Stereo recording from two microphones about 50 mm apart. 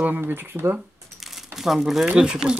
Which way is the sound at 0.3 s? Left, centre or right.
Right.